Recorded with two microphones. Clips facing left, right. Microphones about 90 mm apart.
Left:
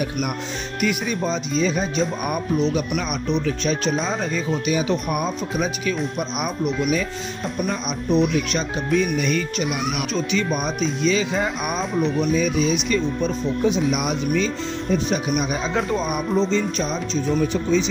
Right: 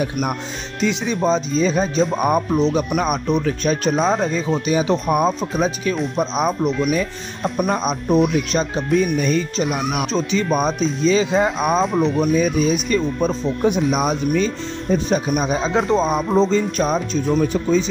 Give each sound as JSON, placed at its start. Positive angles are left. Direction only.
{"t": 0.7, "sound": "speech", "side_deg": -25}
{"t": 1.2, "sound": "speech", "side_deg": -35}
{"t": 4.1, "sound": "speech", "side_deg": -35}
{"t": 7.5, "sound": "speech", "side_deg": -50}
{"t": 11.8, "sound": "speech", "side_deg": 0}
{"t": 12.2, "sound": "speech", "side_deg": -40}
{"t": 16.4, "sound": "speech", "side_deg": -45}